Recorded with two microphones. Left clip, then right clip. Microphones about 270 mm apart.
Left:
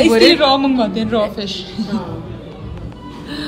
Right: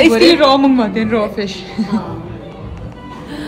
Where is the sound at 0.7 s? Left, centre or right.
Centre.